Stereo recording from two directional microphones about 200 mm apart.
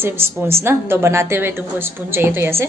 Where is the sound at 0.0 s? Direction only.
10° right (ahead or behind).